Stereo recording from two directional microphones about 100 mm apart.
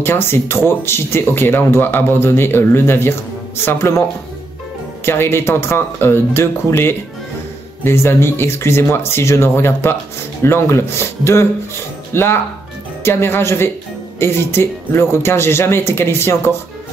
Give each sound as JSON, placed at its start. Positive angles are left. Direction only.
{"t": 0.0, "sound": "speech", "side_deg": 25}
{"t": 5.0, "sound": "speech", "side_deg": 25}